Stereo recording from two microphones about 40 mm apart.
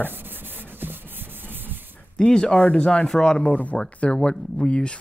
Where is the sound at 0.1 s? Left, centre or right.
Right.